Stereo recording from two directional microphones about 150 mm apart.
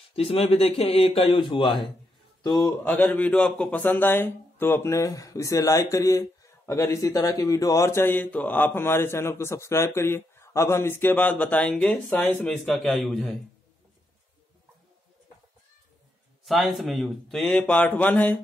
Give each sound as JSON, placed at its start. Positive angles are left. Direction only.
{"t": 0.1, "sound": "a man's voice", "side_deg": 40}
{"t": 2.8, "sound": "a man's voice", "side_deg": 10}
{"t": 12.6, "sound": "speech", "side_deg": 0}
{"t": 16.4, "sound": "speech", "side_deg": 0}